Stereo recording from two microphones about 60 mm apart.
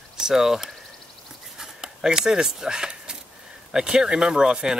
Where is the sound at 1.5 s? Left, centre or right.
Centre.